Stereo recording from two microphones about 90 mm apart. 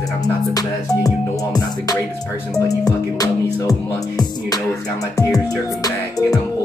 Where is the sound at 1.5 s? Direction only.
45° left (ahead or behind).